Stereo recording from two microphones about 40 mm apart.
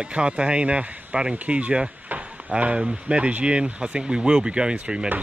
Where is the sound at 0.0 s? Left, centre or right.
Right.